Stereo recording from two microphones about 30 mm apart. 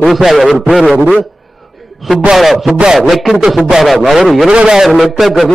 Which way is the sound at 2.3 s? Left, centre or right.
Centre.